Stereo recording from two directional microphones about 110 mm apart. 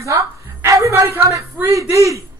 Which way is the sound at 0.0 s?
25° right (ahead or behind).